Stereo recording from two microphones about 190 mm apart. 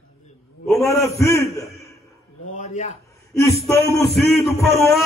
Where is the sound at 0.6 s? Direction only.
Centre (ahead or behind).